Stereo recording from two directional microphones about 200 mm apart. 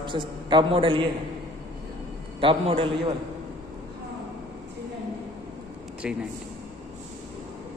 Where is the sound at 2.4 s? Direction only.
25° right (ahead or behind).